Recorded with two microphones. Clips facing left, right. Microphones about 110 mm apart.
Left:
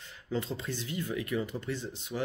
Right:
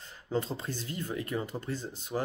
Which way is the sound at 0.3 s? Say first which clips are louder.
Right 1 dB; 40° right (ahead or behind).